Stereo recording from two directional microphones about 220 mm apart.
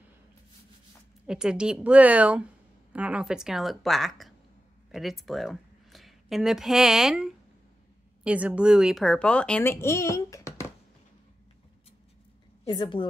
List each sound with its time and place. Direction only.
1.2 s a woman's voice: 5° right (ahead or behind); by 10.7 s 15° left (ahead or behind)
12.6 s a woman's voice: 20° left (ahead or behind)